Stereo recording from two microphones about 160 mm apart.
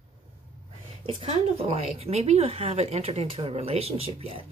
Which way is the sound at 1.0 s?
40° right (ahead or behind).